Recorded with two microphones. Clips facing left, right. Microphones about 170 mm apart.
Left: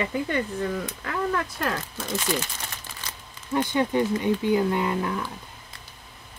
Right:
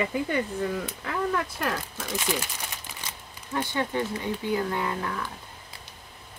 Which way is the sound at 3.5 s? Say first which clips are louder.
Left 5 dB; 15° left (ahead or behind).